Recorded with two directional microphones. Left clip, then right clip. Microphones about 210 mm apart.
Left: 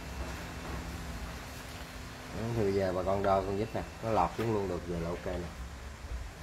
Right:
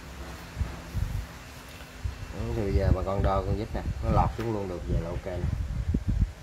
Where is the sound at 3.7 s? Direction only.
30° right (ahead or behind).